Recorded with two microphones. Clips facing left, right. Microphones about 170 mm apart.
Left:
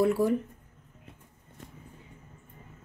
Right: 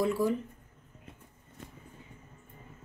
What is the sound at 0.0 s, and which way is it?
Speech, 65° left (ahead or behind).